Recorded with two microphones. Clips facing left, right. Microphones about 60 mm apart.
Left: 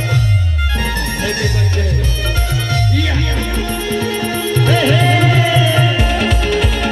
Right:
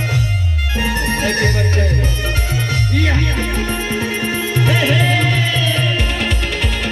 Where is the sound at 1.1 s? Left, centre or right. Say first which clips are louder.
Right 2 dB; right; by 6.6 s centre.